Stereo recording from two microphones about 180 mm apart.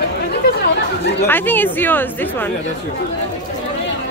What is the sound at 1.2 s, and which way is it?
A man's voice, 10° left (ahead or behind).